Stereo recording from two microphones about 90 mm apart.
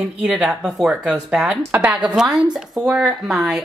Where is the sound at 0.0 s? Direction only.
5° right (ahead or behind).